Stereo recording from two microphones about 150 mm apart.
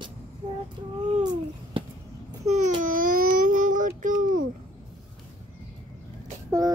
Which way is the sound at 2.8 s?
65° right (ahead or behind).